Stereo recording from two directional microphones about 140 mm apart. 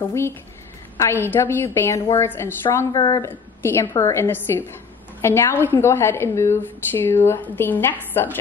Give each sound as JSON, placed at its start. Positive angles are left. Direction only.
{"t": 0.9, "sound": "a woman's voice", "side_deg": 20}
{"t": 3.0, "sound": "a woman's voice", "side_deg": 30}
{"t": 3.3, "sound": "a woman's voice", "side_deg": 15}